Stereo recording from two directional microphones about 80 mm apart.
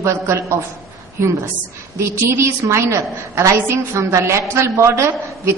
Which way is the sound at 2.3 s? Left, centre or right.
Right.